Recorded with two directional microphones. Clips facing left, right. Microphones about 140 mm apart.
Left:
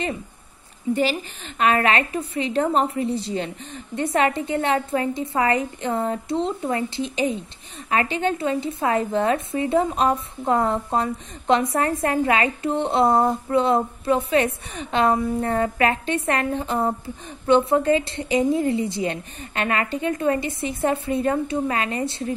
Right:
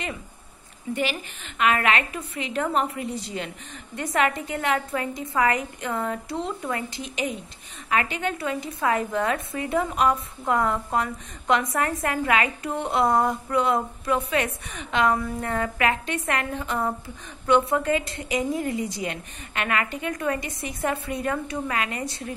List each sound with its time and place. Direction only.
0.9 s a woman's voice: 35° left (ahead or behind)